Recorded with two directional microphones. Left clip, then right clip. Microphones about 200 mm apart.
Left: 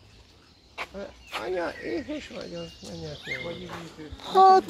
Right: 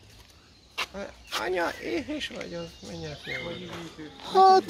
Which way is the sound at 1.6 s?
10° right (ahead or behind).